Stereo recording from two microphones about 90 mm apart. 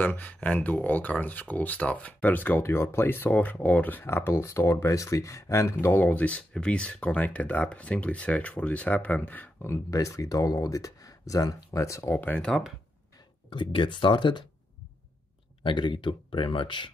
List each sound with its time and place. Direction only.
0.0 s speech: 15° left (ahead or behind)
9.8 s speech: 35° left (ahead or behind)
12.4 s speech: 5° left (ahead or behind)
13.5 s speech: 70° left (ahead or behind)
15.6 s speech: 60° left (ahead or behind)